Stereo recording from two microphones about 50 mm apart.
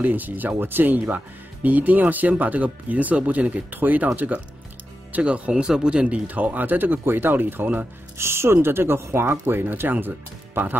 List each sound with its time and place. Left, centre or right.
0.0 s speech: right
1.0 s speech: right
5.2 s speech: right
8.2 s speech: right